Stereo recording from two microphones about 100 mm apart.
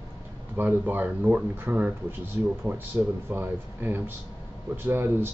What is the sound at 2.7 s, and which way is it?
Speech, 30° right (ahead or behind).